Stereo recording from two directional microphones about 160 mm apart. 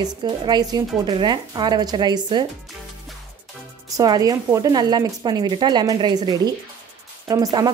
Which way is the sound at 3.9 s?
25° right (ahead or behind).